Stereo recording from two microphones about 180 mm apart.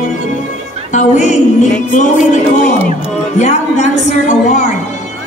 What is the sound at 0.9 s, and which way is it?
A woman's voice, 40° left (ahead or behind).